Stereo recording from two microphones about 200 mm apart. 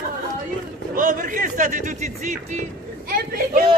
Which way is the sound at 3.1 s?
45° right (ahead or behind).